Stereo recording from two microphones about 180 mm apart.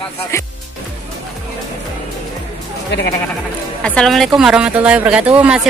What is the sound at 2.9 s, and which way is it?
Speech, 70° left (ahead or behind).